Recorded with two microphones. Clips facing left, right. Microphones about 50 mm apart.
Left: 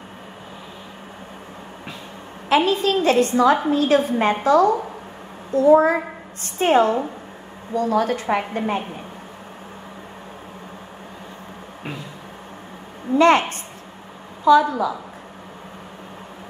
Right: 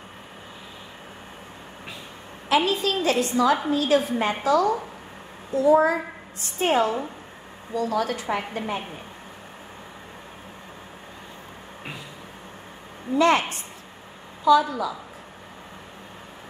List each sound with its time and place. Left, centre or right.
2.5 s a woman's voice: left
13.2 s a woman's voice: left